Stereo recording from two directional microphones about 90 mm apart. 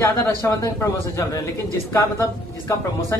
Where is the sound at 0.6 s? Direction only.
40° left (ahead or behind).